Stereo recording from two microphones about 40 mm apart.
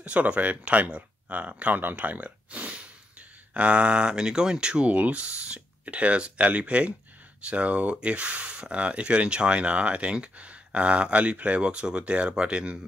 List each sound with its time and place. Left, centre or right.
0.0 s speech: right
1.7 s speech: right
2.5 s speech: right
4.8 s speech: right